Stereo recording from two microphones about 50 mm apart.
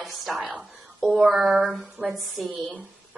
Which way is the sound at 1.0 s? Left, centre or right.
Centre.